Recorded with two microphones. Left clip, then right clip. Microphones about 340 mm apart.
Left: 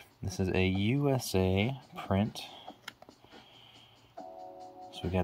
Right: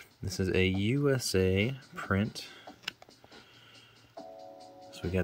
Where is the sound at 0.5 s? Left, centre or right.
Centre.